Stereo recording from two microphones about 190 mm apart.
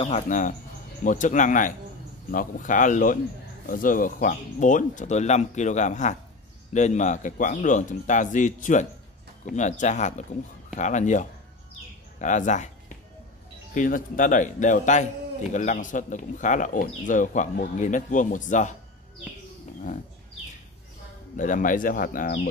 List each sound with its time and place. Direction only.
0.0 s speech: 40° left (ahead or behind)
13.7 s speech: 45° left (ahead or behind)
21.4 s speech: 45° left (ahead or behind)